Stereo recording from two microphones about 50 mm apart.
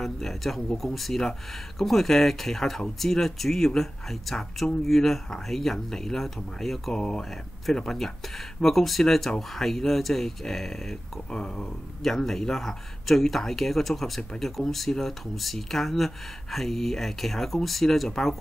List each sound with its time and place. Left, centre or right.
0.0 s speech: centre
8.5 s speech: centre